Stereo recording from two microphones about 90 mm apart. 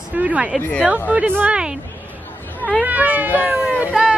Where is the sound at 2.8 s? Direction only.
20° right (ahead or behind).